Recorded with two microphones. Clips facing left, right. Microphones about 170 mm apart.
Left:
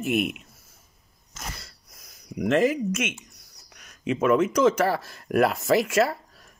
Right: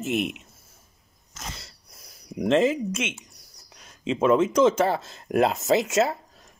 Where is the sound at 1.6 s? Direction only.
25° right (ahead or behind).